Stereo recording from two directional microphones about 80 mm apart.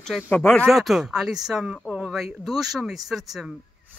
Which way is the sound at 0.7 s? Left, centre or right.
Centre.